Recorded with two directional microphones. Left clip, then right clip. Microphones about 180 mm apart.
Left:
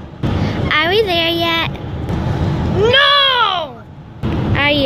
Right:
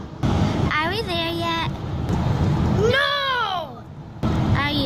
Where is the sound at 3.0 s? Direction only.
10° left (ahead or behind).